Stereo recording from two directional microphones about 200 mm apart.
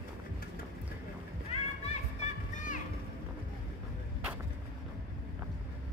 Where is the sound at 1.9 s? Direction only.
35° left (ahead or behind).